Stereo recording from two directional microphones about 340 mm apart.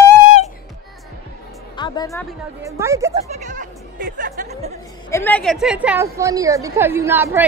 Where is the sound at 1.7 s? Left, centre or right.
Centre.